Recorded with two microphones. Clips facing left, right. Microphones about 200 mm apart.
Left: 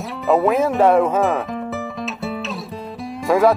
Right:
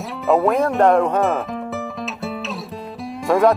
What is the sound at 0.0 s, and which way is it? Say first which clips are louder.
Speech: even; centre (ahead or behind).